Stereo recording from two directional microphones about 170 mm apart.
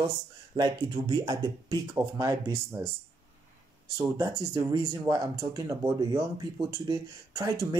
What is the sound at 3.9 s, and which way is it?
Speech, 15° right (ahead or behind).